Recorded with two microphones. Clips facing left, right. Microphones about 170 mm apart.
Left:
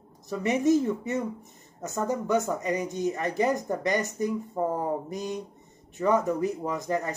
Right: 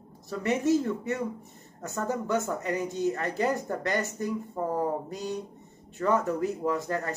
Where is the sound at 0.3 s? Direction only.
15° left (ahead or behind).